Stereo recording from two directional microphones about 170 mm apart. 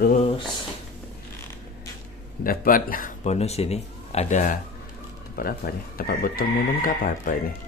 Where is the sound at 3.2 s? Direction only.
40° left (ahead or behind).